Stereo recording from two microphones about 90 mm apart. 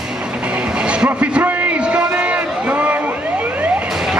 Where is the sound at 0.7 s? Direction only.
10° right (ahead or behind).